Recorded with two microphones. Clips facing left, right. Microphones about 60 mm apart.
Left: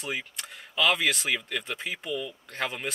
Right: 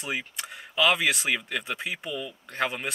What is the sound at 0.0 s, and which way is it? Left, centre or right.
Speech, centre.